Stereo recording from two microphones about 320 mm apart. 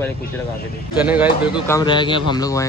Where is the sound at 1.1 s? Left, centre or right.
Centre.